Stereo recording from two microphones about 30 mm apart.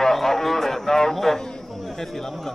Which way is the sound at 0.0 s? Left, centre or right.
Centre.